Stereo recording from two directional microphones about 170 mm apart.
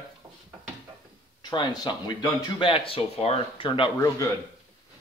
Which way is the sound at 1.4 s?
25° left (ahead or behind).